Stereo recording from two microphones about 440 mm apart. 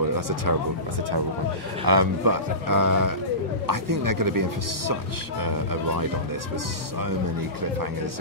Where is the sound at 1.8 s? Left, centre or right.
Right.